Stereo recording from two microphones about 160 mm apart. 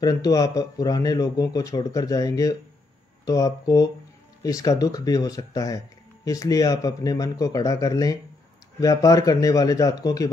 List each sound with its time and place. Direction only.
0.0 s speech: 25° left (ahead or behind)